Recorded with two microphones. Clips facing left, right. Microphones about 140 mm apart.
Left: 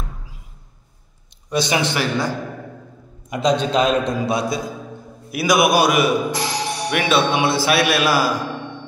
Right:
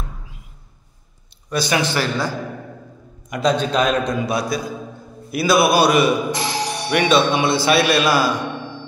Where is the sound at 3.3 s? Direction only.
25° left (ahead or behind).